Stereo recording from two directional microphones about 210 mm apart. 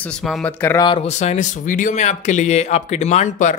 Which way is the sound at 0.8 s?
25° left (ahead or behind).